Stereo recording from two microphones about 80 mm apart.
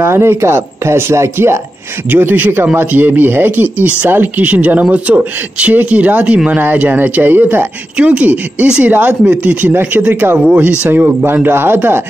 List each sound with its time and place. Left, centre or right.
0.0 s speech: right
2.0 s speech: right